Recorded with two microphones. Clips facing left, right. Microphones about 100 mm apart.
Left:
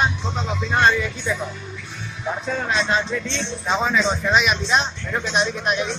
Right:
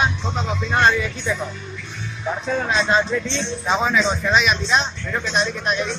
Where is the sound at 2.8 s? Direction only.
35° right (ahead or behind).